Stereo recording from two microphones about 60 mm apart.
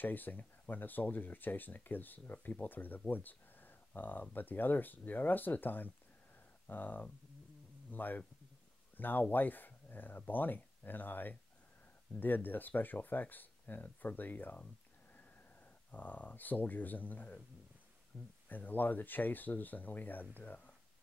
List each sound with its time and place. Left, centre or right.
0.0 s speech: left
15.9 s speech: left
18.1 s speech: centre
18.5 s speech: left